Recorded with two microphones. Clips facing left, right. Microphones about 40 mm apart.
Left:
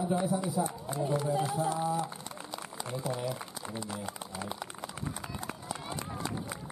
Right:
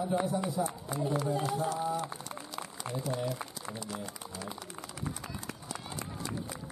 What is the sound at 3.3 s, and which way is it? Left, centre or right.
Speech, left.